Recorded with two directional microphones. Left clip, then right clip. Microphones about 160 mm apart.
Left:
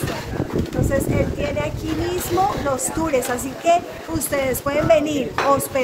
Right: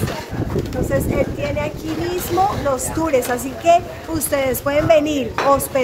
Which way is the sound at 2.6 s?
10° right (ahead or behind).